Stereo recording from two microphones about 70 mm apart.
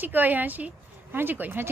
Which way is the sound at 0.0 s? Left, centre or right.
Right.